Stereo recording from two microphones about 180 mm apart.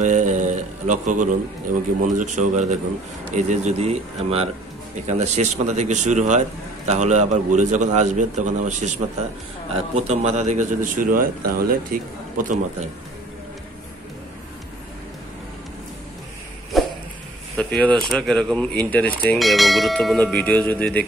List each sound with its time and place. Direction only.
0.0 s mantra: 45° right (ahead or behind)
2.0 s a man's voice: 45° right (ahead or behind)
16.7 s a sound: centre (ahead or behind)
17.6 s speech: 10° left (ahead or behind)